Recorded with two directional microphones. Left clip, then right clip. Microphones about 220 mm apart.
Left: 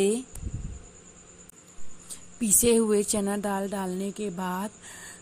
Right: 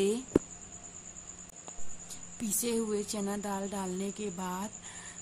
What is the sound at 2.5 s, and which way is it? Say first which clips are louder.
A woman's voice: left 11 dB; 35° left (ahead or behind).